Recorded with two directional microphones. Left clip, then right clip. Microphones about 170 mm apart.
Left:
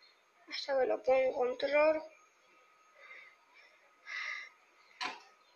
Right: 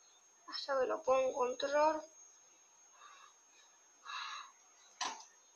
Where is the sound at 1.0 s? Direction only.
15° right (ahead or behind).